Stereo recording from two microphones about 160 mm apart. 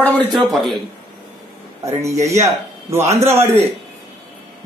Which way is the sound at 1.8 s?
20° right (ahead or behind).